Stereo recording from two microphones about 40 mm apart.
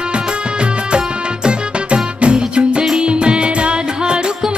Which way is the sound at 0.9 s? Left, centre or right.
Right.